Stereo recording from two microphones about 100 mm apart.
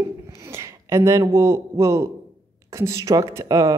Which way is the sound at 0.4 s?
30° right (ahead or behind).